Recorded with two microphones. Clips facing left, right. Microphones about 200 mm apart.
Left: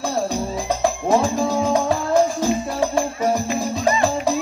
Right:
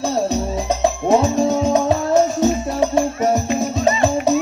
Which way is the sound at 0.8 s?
25° right (ahead or behind).